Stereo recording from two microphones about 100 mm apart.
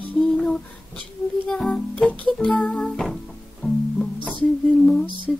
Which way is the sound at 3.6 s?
15° left (ahead or behind).